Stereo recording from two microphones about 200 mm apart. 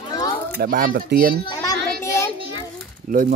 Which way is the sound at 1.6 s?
15° left (ahead or behind).